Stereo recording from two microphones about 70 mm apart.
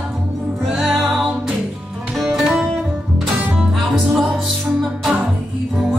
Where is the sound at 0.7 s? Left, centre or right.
Centre.